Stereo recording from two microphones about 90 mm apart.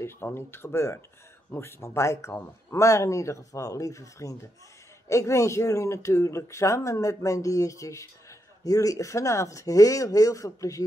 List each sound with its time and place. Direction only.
0.0 s speech: 25° left (ahead or behind)